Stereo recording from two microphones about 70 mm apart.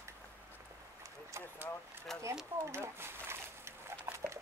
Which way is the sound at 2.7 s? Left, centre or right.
Right.